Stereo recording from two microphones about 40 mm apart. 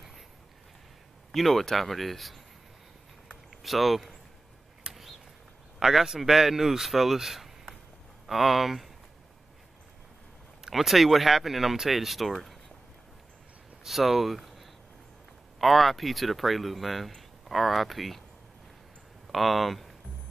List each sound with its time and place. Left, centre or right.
1.3 s speech: centre
3.4 s speech: centre
4.9 s a sound: centre
5.8 s speech: centre
10.7 s speech: centre
13.8 s speech: centre
19.3 s speech: centre